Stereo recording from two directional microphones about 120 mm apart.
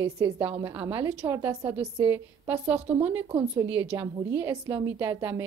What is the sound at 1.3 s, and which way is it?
A woman's voice, 25° right (ahead or behind).